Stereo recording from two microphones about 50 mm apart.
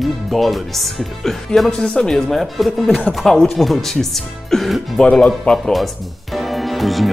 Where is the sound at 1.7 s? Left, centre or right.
Centre.